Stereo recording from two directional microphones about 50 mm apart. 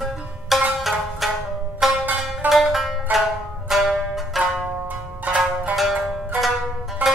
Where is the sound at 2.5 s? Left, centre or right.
Centre.